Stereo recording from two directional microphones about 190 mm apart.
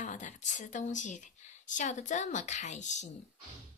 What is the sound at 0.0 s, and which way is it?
A woman's voice, 40° left (ahead or behind).